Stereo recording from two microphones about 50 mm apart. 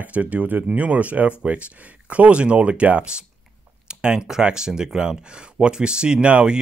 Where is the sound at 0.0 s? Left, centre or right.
Right.